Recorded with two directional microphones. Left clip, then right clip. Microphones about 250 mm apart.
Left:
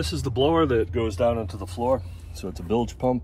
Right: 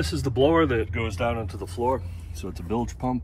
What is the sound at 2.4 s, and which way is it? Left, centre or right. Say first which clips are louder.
Speech: left 2 dB; left.